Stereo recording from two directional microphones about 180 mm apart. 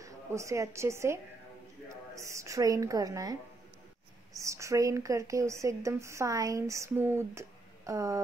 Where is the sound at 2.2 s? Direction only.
15° right (ahead or behind).